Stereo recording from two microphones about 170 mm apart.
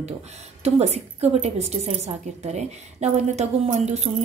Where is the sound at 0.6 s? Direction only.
40° right (ahead or behind).